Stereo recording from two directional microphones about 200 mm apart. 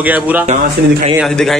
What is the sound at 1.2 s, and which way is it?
Speech, centre (ahead or behind).